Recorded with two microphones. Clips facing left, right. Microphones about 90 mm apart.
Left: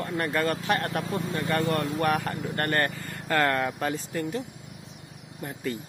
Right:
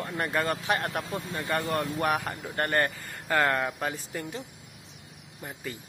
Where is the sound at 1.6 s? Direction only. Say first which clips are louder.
Left 3 dB; 90° left.